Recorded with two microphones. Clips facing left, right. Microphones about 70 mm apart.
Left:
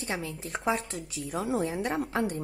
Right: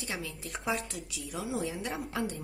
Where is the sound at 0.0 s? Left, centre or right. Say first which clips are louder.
Left 4 dB; left.